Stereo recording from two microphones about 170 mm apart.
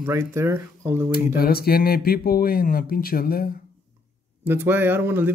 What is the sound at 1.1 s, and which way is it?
Speech, 60° left (ahead or behind).